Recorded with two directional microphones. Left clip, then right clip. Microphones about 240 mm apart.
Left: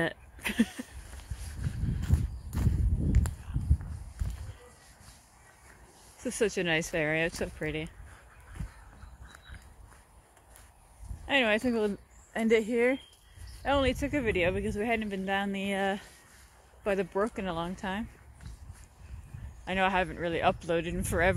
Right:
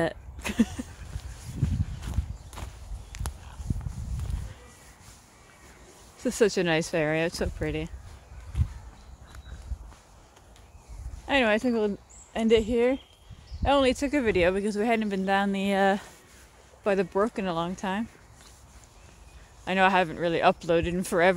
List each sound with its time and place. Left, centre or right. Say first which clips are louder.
0.0 s a sound: right 3 dB; centre
2.0 s clip-clop: left 2 dB; centre
6.2 s speech: right 5 dB; right
11.2 s speech: right 3 dB; centre
13.6 s speech: right 5 dB; centre
19.6 s speech: right 6 dB; right